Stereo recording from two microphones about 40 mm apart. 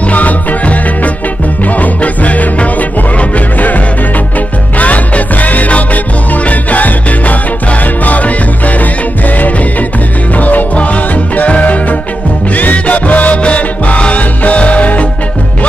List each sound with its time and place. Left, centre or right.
0.1 s music: left